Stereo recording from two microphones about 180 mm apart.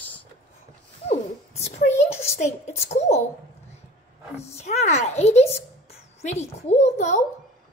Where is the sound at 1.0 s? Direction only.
35° left (ahead or behind).